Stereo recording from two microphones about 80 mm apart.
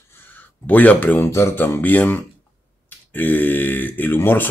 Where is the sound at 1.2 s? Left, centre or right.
Left.